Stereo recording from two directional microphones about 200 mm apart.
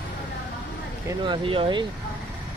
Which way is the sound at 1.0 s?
20° right (ahead or behind).